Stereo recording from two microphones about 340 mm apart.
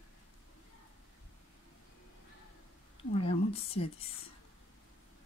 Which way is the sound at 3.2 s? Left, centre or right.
Centre.